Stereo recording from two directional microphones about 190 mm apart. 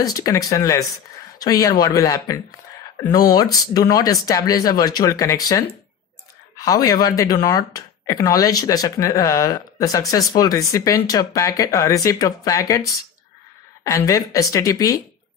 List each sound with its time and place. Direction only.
0.0 s speech: 20° left (ahead or behind)
6.6 s speech: 20° left (ahead or behind)